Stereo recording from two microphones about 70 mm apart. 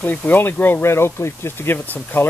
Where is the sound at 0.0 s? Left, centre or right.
Left.